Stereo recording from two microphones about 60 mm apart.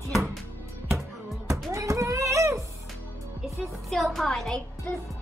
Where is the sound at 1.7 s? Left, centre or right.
Right.